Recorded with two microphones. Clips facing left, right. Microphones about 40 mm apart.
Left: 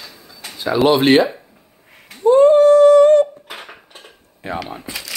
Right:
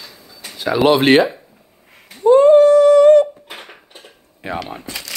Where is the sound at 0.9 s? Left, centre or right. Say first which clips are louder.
Right 1 dB; right.